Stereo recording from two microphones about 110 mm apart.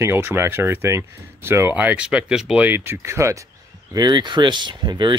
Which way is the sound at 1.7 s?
15° right (ahead or behind).